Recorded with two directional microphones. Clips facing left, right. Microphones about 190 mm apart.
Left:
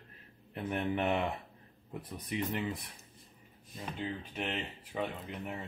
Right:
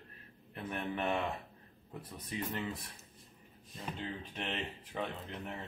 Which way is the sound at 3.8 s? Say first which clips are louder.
Left 3 dB; 5° left (ahead or behind).